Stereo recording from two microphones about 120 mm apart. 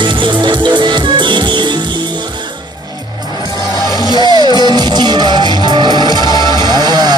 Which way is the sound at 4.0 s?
35° left (ahead or behind).